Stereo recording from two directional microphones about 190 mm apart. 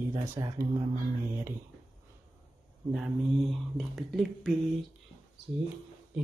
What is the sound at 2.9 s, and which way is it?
Speech, centre (ahead or behind).